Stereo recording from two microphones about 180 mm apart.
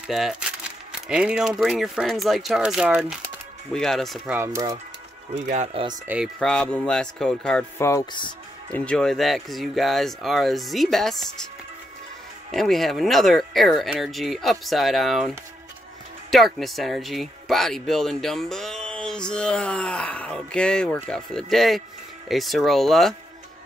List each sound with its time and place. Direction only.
0.1 s speech: 5° right (ahead or behind)
4.3 s speech: 15° right (ahead or behind)
5.3 s speech: 40° right (ahead or behind)
6.0 s speech: 5° right (ahead or behind)
6.4 s speech: 5° left (ahead or behind)
7.8 s speech: 20° left (ahead or behind)
8.7 s speech: 5° left (ahead or behind)
12.4 s speech: centre (ahead or behind)